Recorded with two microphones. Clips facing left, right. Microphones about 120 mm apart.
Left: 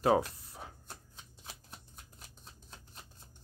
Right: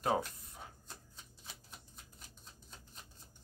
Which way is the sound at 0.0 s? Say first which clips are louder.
Left 6 dB; 35° left (ahead or behind).